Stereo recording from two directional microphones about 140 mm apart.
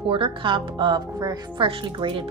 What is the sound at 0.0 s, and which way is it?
Speech, 40° right (ahead or behind).